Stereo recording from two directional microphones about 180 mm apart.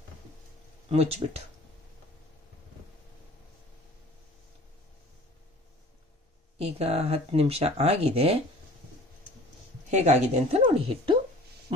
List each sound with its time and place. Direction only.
0.8 s speech: 35° right (ahead or behind)
6.6 s speech: 35° right (ahead or behind)
9.8 s speech: 40° right (ahead or behind)